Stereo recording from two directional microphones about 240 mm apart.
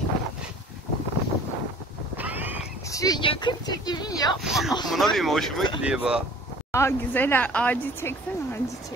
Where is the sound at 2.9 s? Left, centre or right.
Centre.